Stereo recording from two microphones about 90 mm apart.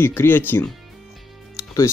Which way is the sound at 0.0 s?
25° left (ahead or behind).